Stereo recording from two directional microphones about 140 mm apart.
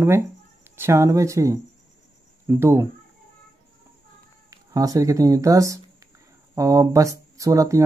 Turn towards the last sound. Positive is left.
turn(degrees=-25)  # may be behind; listen again after turning